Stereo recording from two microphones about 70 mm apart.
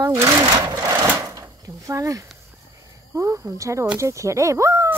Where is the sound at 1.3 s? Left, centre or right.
Right.